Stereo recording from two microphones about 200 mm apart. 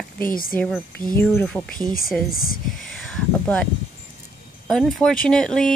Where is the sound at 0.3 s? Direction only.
45° left (ahead or behind).